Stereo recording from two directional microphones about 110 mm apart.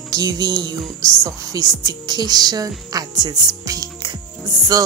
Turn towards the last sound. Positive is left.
turn(degrees=-35)  # may be behind; listen again after turning